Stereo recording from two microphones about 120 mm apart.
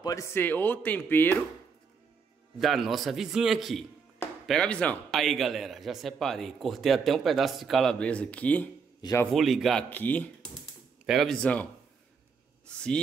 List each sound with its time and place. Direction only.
0.0 s speech: 25° left (ahead or behind)
2.6 s a man's voice: centre (ahead or behind)
9.3 s a man's voice: centre (ahead or behind)
9.8 s speech: 15° left (ahead or behind)
11.1 s a man's voice: centre (ahead or behind)
12.6 s speech: 5° left (ahead or behind)